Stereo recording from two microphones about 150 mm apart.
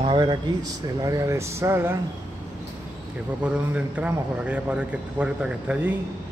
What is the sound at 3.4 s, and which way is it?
A man's voice, 10° right (ahead or behind).